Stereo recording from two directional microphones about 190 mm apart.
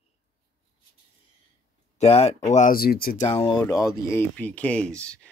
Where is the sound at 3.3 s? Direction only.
30° left (ahead or behind).